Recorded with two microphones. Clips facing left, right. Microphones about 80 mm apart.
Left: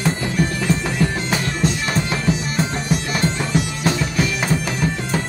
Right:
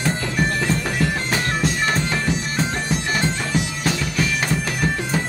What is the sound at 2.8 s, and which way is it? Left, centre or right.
Bagpipes, right.